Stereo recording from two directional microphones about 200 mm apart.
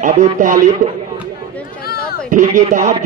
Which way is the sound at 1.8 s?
50° left (ahead or behind).